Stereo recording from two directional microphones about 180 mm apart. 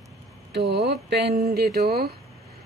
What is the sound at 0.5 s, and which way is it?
Speech, 65° right (ahead or behind).